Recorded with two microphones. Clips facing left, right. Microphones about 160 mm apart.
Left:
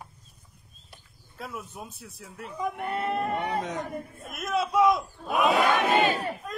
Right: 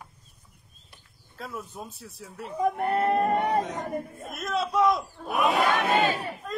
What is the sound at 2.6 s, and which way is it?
Speech, 45° right (ahead or behind).